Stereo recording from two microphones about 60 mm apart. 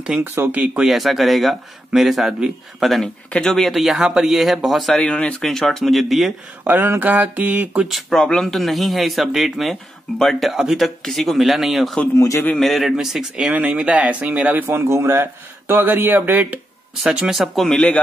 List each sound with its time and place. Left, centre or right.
0.5 s speech: right
0.8 s speech: centre
3.7 s speech: centre
4.9 s speech: centre
6.6 s speech: right
8.1 s speech: centre
12.2 s a man's voice: left
12.5 s speech: centre
12.9 s speech: centre
13.5 s speech: right
14.8 s speech: right
17.0 s speech: centre
17.4 s speech: centre